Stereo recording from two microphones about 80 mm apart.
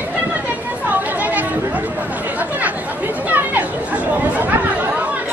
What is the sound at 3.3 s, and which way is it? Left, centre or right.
Chatter, right.